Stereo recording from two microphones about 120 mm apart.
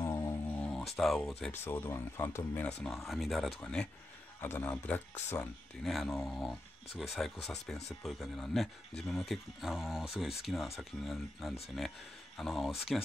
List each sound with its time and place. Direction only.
0.0 s a sound: 30° left (ahead or behind)
0.6 s a sound: 10° left (ahead or behind)
0.9 s speech: 5° left (ahead or behind)
1.5 s speech: 20° left (ahead or behind)
2.9 s speech: centre (ahead or behind)
4.4 s a man's voice: 20° left (ahead or behind)
5.9 s speech: centre (ahead or behind)